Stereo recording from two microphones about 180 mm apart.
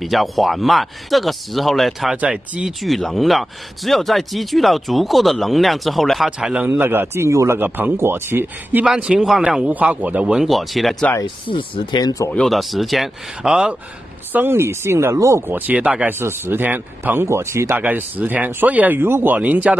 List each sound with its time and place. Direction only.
0.0 s speech: centre (ahead or behind)
11.4 s speech: 25° left (ahead or behind)
12.3 s speech: 5° left (ahead or behind)